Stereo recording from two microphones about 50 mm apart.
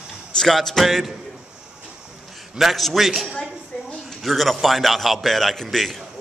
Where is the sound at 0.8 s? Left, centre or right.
Centre.